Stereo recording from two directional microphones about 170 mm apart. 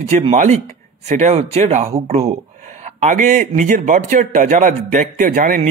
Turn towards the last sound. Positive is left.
turn(degrees=-50)  # may be behind; listen again after turning